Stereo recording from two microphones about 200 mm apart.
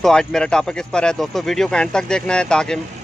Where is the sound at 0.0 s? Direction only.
5° left (ahead or behind).